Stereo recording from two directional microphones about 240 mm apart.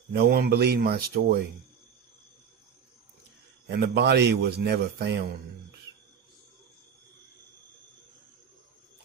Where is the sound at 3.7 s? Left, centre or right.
Right.